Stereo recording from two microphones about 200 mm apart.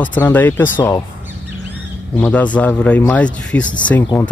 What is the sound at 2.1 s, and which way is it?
A man's voice, 10° left (ahead or behind).